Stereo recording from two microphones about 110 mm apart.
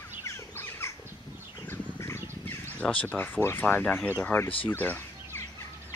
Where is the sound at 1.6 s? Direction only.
20° left (ahead or behind).